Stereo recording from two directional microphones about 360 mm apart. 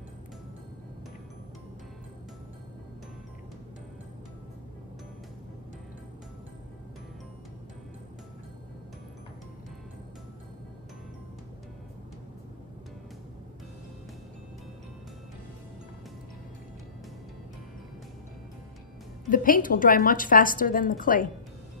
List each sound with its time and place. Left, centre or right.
19.2 s a woman's voice: left